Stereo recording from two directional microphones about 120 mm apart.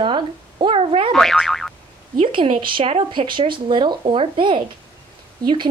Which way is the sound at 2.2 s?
45° right (ahead or behind).